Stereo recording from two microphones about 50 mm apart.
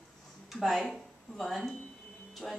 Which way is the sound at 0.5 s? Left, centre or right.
Centre.